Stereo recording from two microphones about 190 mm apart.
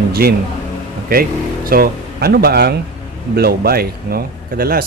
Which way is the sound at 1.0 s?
50° right (ahead or behind).